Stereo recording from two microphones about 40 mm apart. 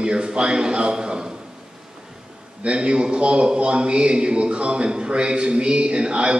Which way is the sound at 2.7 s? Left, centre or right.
Right.